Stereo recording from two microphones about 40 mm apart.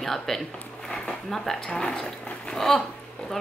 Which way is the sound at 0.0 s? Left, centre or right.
Centre.